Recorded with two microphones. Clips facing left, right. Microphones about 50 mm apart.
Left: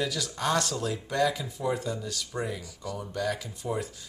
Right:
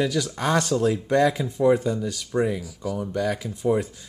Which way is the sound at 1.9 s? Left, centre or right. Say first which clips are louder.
Right 7 dB; centre.